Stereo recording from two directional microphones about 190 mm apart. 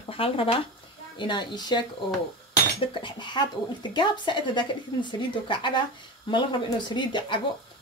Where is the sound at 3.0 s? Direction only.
25° left (ahead or behind).